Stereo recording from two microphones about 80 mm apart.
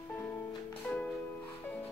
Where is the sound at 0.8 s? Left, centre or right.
Centre.